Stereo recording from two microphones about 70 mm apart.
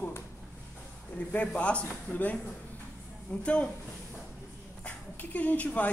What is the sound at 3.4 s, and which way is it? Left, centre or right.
Speech, centre.